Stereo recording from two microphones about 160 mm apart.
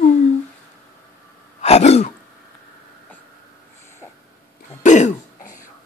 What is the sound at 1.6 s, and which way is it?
Throat clearing, 40° left (ahead or behind).